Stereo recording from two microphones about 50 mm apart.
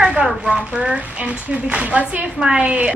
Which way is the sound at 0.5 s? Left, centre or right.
Centre.